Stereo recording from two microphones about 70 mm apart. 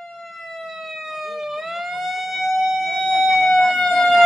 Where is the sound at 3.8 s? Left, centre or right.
Centre.